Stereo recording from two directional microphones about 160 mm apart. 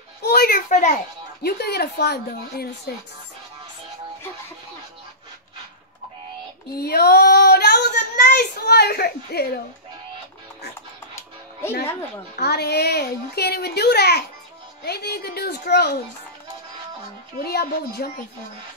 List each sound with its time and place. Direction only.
0.2 s a sound: 75° left (ahead or behind)
0.7 s a child's voice: 50° left (ahead or behind)
1.4 s a woman's voice: 80° left
6.8 s speech: 75° left (ahead or behind)
12.4 s a woman's voice: 90° left
17.4 s speech: 75° left (ahead or behind)